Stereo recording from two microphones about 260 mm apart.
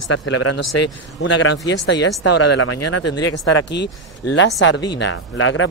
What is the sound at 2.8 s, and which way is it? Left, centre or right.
Speech, left.